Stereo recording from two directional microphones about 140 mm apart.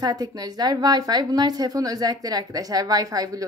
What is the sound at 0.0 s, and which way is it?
A woman's voice, 25° right (ahead or behind).